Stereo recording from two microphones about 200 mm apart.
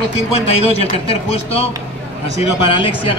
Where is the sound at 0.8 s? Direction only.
30° left (ahead or behind).